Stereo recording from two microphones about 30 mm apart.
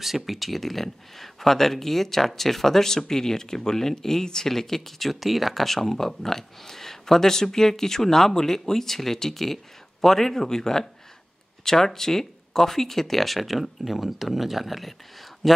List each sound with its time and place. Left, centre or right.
0.0 s speech: centre